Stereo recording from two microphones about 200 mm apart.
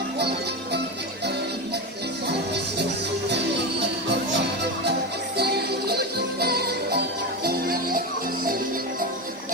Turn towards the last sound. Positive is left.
turn(degrees=-50)  # may be behind; listen again after turning